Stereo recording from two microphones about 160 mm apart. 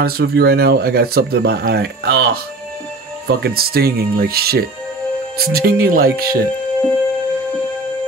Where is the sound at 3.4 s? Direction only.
70° right (ahead or behind).